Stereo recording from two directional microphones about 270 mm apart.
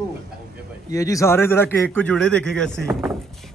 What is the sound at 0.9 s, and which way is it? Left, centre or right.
A man's voice, centre.